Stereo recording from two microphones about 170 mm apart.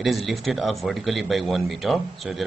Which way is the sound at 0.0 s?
Centre (ahead or behind).